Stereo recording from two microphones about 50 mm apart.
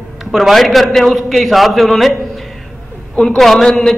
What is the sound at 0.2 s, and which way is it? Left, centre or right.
A man's voice, centre.